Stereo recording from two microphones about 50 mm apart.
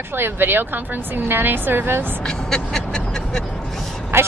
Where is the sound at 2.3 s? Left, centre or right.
Centre.